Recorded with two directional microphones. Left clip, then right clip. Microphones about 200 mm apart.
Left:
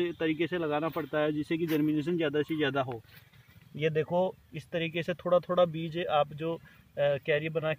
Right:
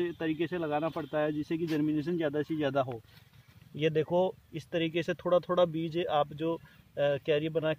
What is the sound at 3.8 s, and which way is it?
Speech, 20° right (ahead or behind).